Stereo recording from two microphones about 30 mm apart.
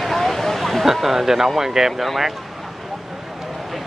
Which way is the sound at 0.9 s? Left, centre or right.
Centre.